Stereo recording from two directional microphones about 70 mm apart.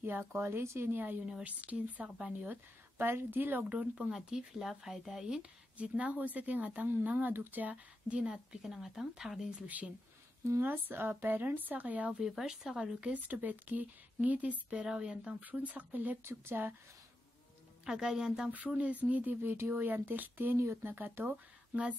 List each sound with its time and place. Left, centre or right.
0.0 s speech: right
12.2 s speech: centre; by 16.2 s right
16.3 s speech: right
17.8 s speech: centre
18.7 s speech: right
19.5 s speech: right
21.3 s speech: centre